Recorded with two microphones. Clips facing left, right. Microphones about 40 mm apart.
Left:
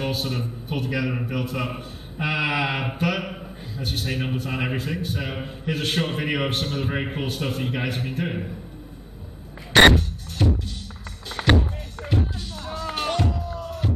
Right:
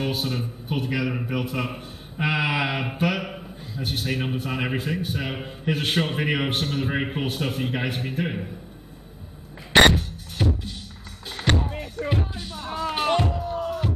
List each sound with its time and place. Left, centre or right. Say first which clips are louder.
0.1 s a man's voice: even; centre
9.8 s music: left 2 dB; centre
10.4 s music: left 2 dB; centre
11.4 s music: left 3 dB; left
12.1 s music: left 4 dB; centre
13.3 s music: right 3 dB; right
13.7 s music: right 1 dB; centre